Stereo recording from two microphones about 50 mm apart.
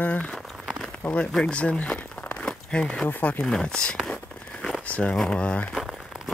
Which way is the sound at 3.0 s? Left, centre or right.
Left.